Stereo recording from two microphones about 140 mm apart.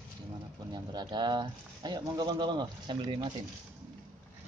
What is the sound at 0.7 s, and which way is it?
Speech, 30° right (ahead or behind).